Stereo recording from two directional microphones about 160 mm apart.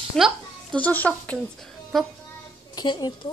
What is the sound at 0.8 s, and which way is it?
Speech, 10° left (ahead or behind).